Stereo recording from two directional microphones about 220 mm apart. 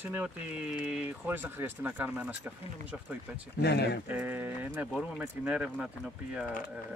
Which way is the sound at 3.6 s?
50° left (ahead or behind).